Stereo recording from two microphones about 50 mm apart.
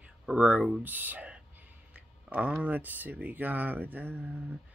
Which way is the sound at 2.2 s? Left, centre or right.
Right.